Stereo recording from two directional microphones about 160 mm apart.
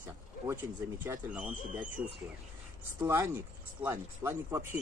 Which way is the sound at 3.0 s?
15° right (ahead or behind).